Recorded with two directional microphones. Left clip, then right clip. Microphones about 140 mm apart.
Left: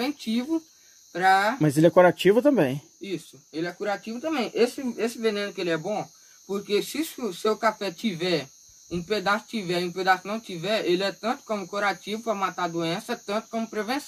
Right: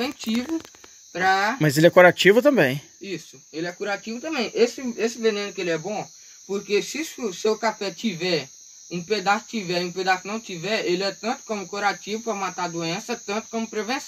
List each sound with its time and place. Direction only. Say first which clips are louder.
1.1 s speech: even; 5° left (ahead or behind)
1.6 s speech: right 8 dB; 5° right (ahead or behind)
3.5 s speech: right 1 dB; 10° left (ahead or behind)